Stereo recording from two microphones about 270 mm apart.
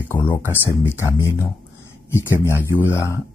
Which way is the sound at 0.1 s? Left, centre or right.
Centre.